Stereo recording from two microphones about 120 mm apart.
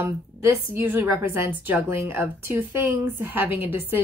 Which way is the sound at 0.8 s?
15° right (ahead or behind).